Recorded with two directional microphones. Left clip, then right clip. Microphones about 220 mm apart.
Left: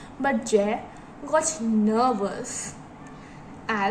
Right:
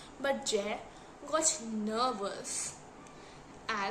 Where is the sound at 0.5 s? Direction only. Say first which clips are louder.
Left 12 dB; 20° right (ahead or behind).